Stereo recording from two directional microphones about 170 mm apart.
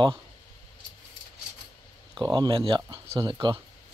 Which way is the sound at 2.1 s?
25° right (ahead or behind).